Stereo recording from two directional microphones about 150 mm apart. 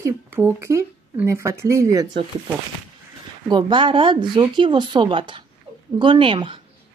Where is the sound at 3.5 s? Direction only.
30° right (ahead or behind).